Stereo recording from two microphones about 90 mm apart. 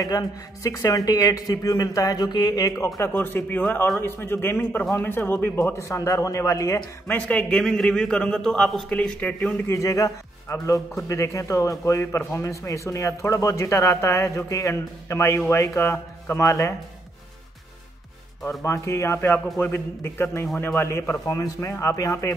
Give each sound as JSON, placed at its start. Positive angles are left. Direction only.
{"t": 0.7, "sound": "speech", "side_deg": 40}
{"t": 3.0, "sound": "a man's voice", "side_deg": 25}
{"t": 7.1, "sound": "a man's voice", "side_deg": 15}
{"t": 9.7, "sound": "a man's voice", "side_deg": 35}
{"t": 18.6, "sound": "a man's voice", "side_deg": 35}
{"t": 19.1, "sound": "a man's voice", "side_deg": 20}